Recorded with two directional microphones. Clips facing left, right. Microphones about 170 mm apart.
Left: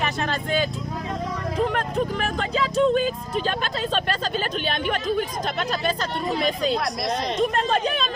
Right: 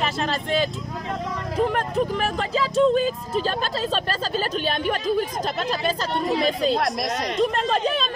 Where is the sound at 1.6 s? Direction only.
Centre (ahead or behind).